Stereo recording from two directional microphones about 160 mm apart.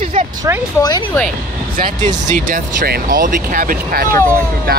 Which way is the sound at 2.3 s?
60° right (ahead or behind).